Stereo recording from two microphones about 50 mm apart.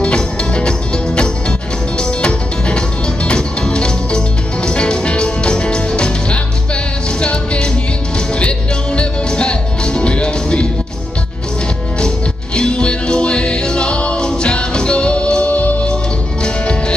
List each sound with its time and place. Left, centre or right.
0.0 s music: centre
12.5 s music: centre